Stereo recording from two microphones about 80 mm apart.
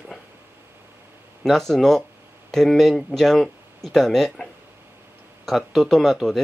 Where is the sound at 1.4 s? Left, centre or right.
Centre.